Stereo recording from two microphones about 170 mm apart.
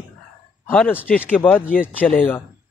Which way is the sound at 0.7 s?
10° left (ahead or behind).